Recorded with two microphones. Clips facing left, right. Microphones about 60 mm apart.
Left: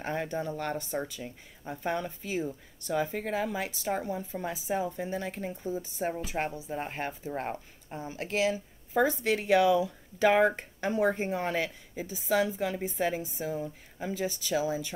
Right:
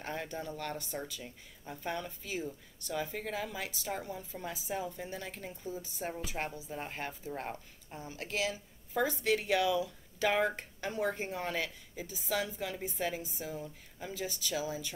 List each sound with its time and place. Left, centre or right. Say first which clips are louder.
0.0 s speech: left 7 dB; left
14.1 s speech: left 6 dB; left